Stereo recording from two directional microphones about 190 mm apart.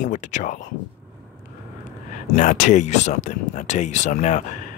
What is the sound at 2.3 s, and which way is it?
Speech, 40° left (ahead or behind).